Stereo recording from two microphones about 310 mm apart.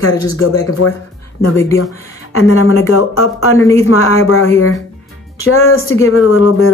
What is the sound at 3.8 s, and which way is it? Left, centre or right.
Speech, left.